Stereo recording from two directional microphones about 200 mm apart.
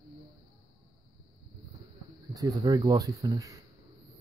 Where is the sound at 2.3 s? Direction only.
20° right (ahead or behind).